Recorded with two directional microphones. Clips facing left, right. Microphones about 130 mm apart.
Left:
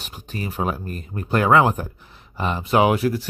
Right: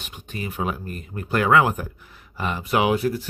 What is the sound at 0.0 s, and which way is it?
Speech, 35° left (ahead or behind).